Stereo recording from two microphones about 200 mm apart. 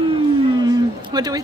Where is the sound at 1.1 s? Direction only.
20° right (ahead or behind).